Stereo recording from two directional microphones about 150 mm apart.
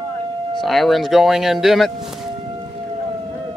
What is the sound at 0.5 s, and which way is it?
Speech, centre (ahead or behind).